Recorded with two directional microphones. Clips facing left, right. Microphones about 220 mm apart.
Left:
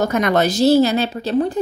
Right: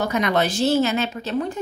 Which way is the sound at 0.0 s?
45° left (ahead or behind).